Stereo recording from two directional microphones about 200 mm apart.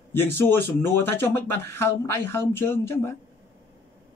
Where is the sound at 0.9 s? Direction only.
10° left (ahead or behind).